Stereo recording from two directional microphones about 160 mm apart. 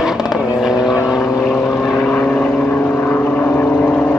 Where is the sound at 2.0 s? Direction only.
10° left (ahead or behind).